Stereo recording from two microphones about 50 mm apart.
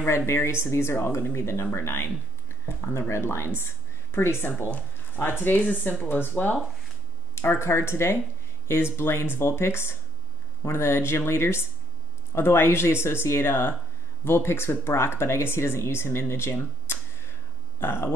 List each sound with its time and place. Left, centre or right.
0.3 s speech: left
4.6 s a sound: left
5.2 s speech: left
7.3 s speech: left